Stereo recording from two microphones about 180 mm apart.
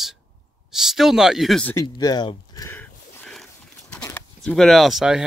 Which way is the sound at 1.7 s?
20° left (ahead or behind).